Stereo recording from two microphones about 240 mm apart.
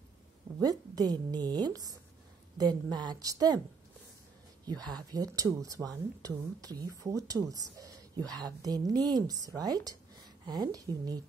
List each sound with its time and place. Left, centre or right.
0.6 s speech: centre
4.9 s speech: centre